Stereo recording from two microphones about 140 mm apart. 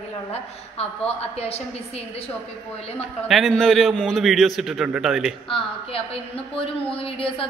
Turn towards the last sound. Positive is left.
turn(degrees=40)  # may be behind; listen again after turning